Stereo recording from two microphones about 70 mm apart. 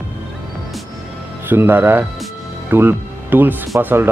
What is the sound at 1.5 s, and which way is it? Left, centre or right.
Speech, right.